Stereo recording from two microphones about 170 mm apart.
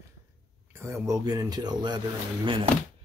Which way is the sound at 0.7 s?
15° right (ahead or behind).